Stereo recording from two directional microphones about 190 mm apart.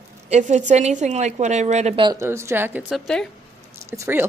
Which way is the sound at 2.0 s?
20° right (ahead or behind).